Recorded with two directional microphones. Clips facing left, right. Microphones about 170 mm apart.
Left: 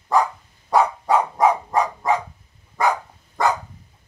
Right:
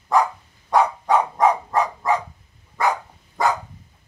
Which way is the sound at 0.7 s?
5° left (ahead or behind).